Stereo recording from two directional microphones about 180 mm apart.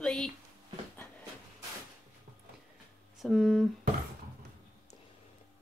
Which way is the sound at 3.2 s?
Centre (ahead or behind).